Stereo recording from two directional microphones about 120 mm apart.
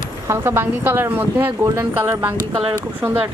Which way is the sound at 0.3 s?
20° right (ahead or behind).